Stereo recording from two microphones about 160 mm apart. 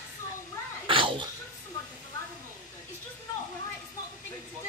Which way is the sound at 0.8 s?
30° right (ahead or behind).